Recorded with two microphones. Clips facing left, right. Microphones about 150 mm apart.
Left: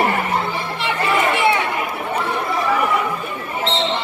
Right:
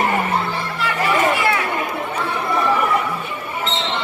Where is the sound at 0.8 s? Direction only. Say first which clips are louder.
Right 1 dB; 25° left (ahead or behind).